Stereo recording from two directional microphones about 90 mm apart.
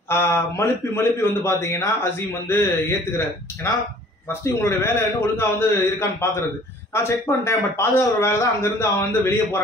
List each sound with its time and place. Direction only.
0.1 s a man's voice: 25° left (ahead or behind)